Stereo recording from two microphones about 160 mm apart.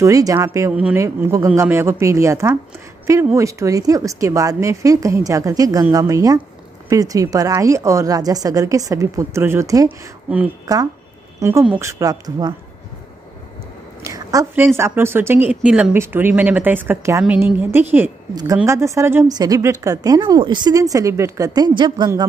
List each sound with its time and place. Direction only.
0.0 s a woman's voice: 20° right (ahead or behind)
10.6 s speech: 25° right (ahead or behind)
11.9 s a woman's voice: 25° right (ahead or behind)
14.0 s a woman's voice: 20° right (ahead or behind)
18.3 s a woman's voice: 25° right (ahead or behind)